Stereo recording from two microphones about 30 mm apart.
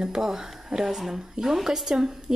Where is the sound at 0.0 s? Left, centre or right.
Right.